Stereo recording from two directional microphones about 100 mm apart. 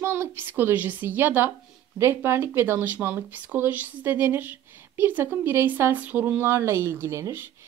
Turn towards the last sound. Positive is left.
turn(degrees=-25)  # may be behind; listen again after turning